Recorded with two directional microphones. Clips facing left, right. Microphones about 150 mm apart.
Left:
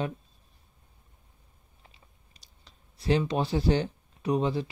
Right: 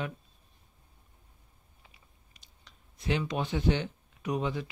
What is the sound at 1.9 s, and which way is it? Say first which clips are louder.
Clicking: left 2 dB; 35° left (ahead or behind).